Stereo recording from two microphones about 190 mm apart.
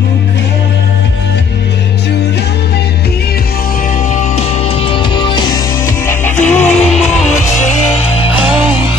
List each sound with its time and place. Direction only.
4.1 s music: 35° left (ahead or behind)
6.4 s music: 10° left (ahead or behind)
8.5 s music: 10° right (ahead or behind)